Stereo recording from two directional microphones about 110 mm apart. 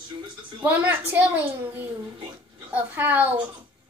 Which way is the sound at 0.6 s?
15° right (ahead or behind).